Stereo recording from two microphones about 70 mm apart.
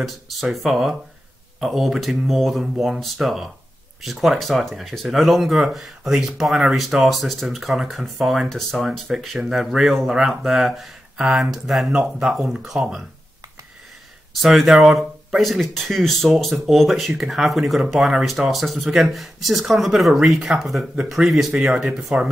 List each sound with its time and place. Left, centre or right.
0.0 s speech: centre
14.4 s speech: centre